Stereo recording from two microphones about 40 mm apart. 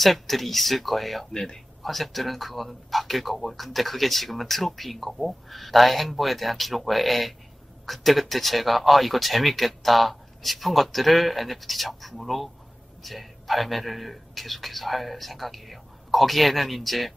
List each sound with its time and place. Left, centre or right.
0.0 s speech: centre
1.3 s speech: centre
1.8 s speech: centre